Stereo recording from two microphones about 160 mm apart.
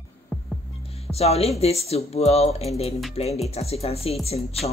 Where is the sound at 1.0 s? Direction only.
40° left (ahead or behind).